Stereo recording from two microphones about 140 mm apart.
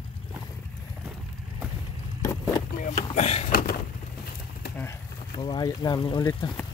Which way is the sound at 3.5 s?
90° left.